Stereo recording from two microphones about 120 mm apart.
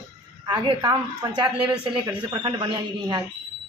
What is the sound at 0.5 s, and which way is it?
Speech, 35° right (ahead or behind).